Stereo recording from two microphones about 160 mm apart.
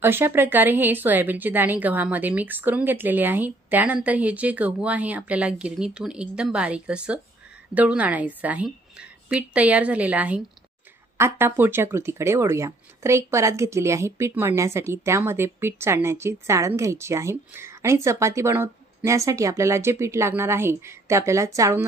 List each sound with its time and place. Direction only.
0.0 s speech: 15° right (ahead or behind)